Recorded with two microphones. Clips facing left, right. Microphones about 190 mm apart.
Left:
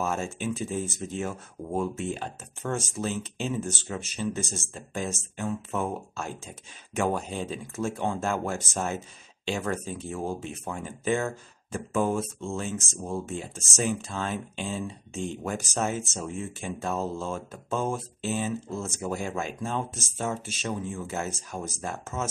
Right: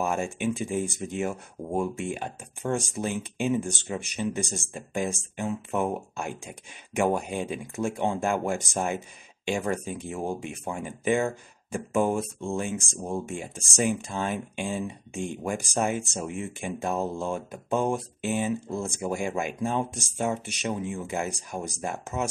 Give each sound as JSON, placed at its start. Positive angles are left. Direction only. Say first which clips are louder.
{"t": 0.0, "sound": "speech", "louder": "right 2 dB", "side_deg": -15}